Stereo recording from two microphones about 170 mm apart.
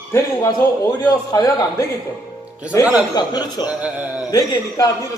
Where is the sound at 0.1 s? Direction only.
20° left (ahead or behind).